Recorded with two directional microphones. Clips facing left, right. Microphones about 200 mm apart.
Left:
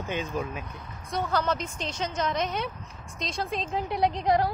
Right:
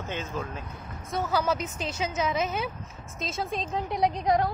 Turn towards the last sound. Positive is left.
turn(degrees=0)  # may be behind; listen again after turning